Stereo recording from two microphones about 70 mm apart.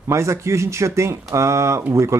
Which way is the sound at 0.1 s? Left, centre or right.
Right.